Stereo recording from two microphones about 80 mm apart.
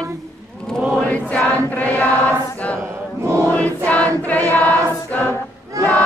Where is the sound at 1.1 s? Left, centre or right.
Centre.